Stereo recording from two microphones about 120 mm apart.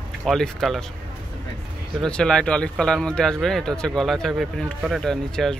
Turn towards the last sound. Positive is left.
turn(degrees=5)  # may be behind; listen again after turning